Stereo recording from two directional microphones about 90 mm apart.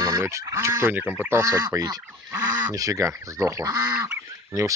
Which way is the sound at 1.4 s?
35° right (ahead or behind).